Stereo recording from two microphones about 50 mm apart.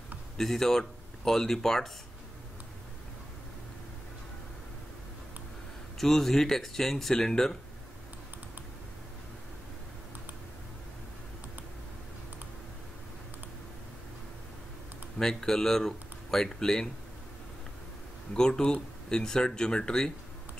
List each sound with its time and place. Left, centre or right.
0.4 s speech: centre
5.9 s speech: centre
15.1 s speech: centre
18.3 s speech: centre